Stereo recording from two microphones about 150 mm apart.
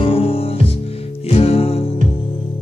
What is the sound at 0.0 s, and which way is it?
Music, 40° left (ahead or behind).